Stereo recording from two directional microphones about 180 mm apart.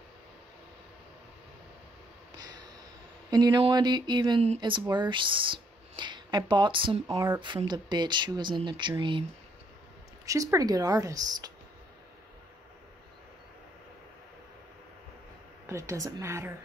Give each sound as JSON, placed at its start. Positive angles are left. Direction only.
{"t": 2.3, "sound": "a sound", "side_deg": -20}
{"t": 3.3, "sound": "speech", "side_deg": -20}
{"t": 10.2, "sound": "speech", "side_deg": -20}
{"t": 15.6, "sound": "a woman's voice", "side_deg": -15}